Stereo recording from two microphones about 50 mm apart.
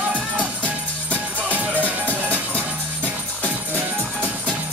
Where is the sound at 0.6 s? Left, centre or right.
Right.